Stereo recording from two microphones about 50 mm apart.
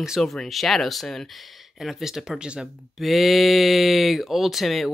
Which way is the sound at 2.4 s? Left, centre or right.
Centre.